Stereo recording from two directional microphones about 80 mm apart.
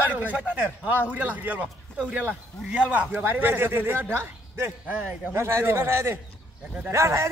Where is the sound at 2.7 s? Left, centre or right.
Centre.